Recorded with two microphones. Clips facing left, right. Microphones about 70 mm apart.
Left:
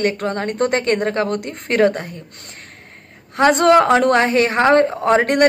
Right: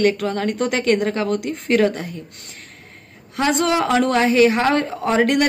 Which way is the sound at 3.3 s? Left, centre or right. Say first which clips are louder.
Left 7 dB; left.